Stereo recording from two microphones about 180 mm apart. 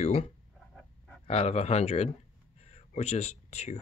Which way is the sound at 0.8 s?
5° left (ahead or behind).